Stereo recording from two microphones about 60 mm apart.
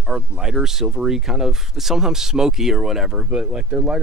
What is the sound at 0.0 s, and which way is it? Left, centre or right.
Speech, centre.